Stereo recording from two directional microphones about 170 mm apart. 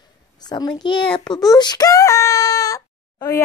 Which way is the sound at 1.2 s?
20° left (ahead or behind).